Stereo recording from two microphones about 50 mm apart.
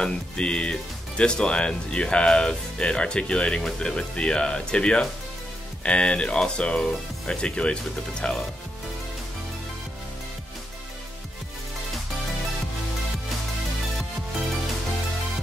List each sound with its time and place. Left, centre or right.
0.0 s speech: centre